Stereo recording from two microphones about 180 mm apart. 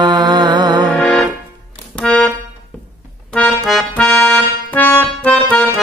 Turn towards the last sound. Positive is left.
turn(degrees=5)  # may be behind; listen again after turning